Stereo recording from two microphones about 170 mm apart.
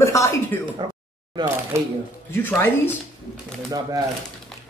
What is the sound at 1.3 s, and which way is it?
Speech, 15° right (ahead or behind).